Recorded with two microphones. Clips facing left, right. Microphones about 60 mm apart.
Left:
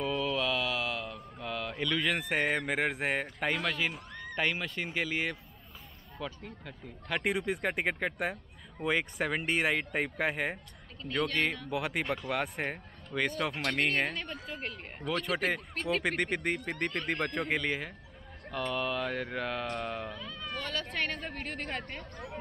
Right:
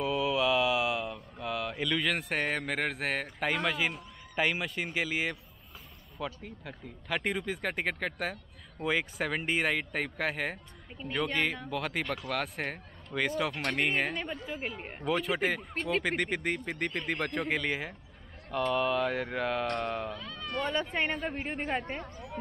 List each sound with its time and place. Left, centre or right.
0.0 s mantra: centre
1.1 s speech: centre
4.1 s a sound: left
4.4 s speech: centre
11.7 s speech: centre
20.8 s a woman's voice: centre